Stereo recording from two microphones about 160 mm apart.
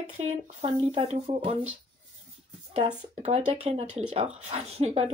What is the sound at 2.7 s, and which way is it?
Speech, 40° right (ahead or behind).